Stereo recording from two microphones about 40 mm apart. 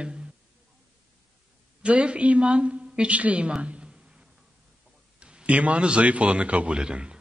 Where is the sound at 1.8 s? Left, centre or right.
Right.